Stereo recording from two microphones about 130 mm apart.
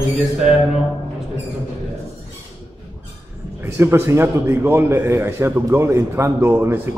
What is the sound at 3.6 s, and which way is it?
A man's voice, 20° right (ahead or behind).